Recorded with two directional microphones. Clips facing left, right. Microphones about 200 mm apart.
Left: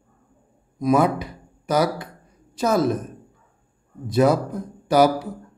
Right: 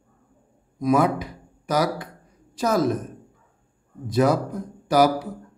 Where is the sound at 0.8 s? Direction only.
25° left (ahead or behind).